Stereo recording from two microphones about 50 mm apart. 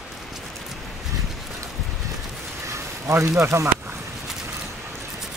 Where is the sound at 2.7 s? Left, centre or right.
Right.